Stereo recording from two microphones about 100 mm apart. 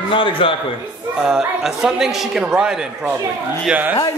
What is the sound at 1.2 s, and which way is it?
A man's voice, 5° right (ahead or behind).